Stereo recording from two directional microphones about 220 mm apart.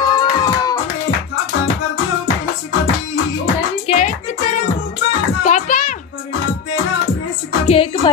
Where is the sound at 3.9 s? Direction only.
35° left (ahead or behind).